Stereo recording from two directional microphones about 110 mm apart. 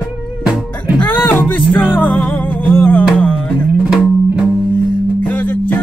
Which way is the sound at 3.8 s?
5° right (ahead or behind).